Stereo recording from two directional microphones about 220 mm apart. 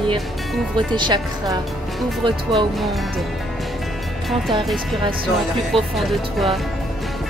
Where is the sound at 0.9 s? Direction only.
20° right (ahead or behind).